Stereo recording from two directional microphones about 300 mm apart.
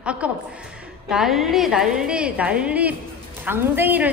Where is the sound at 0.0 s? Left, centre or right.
Centre.